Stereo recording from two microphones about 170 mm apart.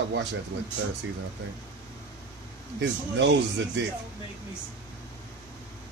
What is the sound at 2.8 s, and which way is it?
Speech, 90° right.